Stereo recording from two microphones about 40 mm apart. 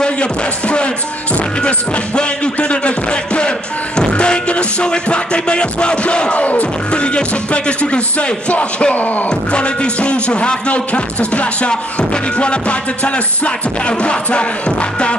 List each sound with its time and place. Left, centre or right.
0.0 s speech: left
1.6 s music: left
8.9 s a sound: left
9.3 s music: left
11.7 s music: left